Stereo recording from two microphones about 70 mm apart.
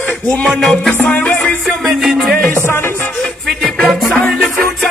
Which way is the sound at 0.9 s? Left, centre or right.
Left.